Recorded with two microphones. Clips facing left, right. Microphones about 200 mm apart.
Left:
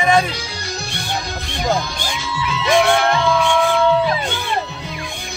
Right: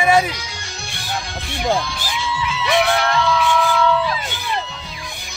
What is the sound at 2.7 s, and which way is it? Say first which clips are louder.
Music: left 3 dB; 50° left (ahead or behind).